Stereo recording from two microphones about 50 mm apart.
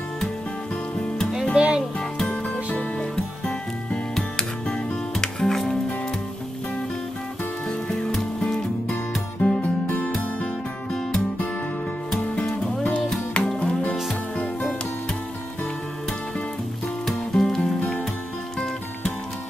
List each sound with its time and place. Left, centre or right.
1.5 s music: centre
2.2 s music: left
4.1 s music: centre
8.4 s music: centre
10.1 s music: centre
13.6 s music: left
17.0 s music: centre